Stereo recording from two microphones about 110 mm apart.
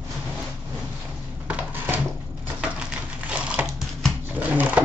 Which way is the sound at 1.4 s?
20° right (ahead or behind).